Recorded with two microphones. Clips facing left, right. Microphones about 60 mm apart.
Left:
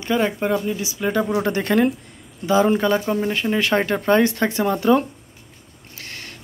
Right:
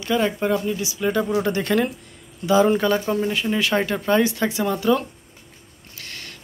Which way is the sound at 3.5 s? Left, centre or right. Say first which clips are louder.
Left 2 dB; left.